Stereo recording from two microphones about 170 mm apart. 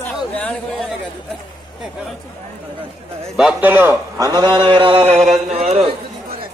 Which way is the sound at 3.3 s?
5° right (ahead or behind).